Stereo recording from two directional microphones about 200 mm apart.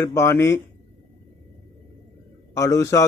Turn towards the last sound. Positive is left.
turn(degrees=15)  # may be behind; listen again after turning